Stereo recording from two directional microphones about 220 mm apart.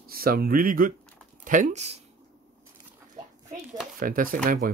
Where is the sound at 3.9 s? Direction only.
40° right (ahead or behind).